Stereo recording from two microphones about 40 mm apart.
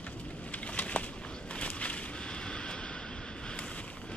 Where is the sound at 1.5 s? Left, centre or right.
Left.